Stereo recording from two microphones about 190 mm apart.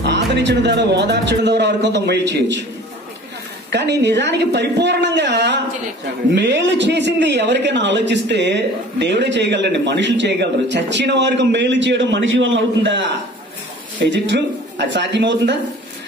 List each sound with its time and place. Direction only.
0.0 s speech: 65° right (ahead or behind)
3.7 s a man's voice: 65° right (ahead or behind)